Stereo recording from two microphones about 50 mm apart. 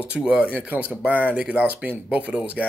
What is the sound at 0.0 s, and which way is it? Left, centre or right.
Speech, right.